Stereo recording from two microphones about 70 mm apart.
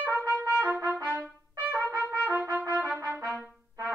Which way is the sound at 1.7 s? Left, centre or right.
Right.